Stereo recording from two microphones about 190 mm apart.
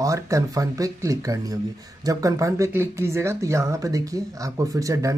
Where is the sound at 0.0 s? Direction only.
15° right (ahead or behind).